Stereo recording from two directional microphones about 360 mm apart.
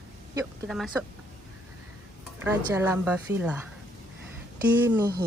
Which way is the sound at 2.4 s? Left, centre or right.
Centre.